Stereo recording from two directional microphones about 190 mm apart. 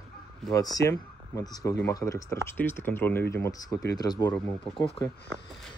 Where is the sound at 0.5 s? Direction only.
20° left (ahead or behind).